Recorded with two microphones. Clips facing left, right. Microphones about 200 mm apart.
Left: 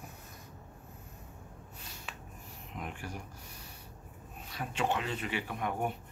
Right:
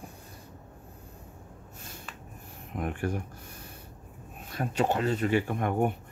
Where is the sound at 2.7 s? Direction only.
55° right (ahead or behind).